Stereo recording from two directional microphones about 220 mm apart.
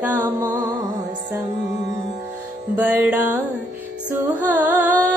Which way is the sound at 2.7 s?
10° right (ahead or behind).